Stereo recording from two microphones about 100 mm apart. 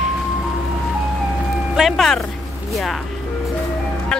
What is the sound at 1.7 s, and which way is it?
Speech, centre (ahead or behind).